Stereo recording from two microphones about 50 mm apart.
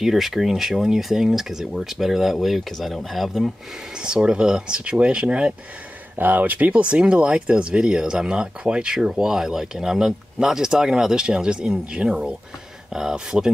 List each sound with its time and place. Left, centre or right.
0.0 s speech: centre
4.0 s speech: centre
6.1 s speech: right; by 13.5 s centre